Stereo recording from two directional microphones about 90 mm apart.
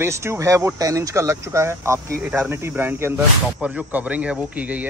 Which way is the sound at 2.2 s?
15° right (ahead or behind).